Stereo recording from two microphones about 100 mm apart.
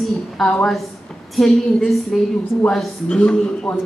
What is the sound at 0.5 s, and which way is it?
A woman's voice, 5° left (ahead or behind).